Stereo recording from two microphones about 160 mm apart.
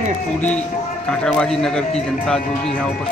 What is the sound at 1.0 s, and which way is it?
Speech, 5° left (ahead or behind).